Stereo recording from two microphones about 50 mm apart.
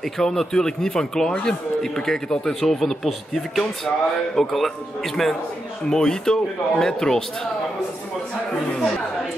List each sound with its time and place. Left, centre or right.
0.2 s a man's voice: centre